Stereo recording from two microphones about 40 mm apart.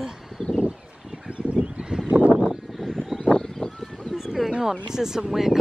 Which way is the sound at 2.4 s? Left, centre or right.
Centre.